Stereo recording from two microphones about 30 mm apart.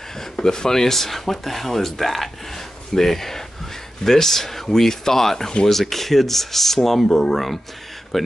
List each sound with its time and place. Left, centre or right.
0.2 s speech: left
7.1 s speech: left